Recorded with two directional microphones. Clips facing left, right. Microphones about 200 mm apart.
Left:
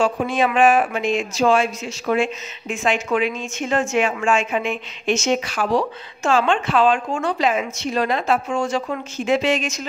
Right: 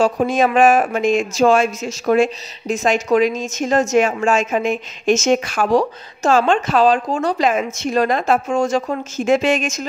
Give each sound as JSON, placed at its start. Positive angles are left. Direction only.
{"t": 0.0, "sound": "speech", "side_deg": -40}